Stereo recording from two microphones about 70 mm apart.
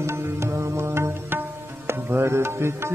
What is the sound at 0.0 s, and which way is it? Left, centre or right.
Music, right.